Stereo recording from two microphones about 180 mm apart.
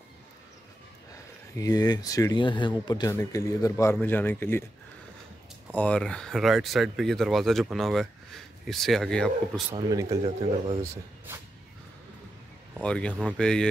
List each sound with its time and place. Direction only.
1.6 s speech: 20° left (ahead or behind)
5.7 s speech: 10° left (ahead or behind)
9.8 s speech: 20° right (ahead or behind)
10.2 s speech: 30° right (ahead or behind)
12.8 s speech: 5° left (ahead or behind)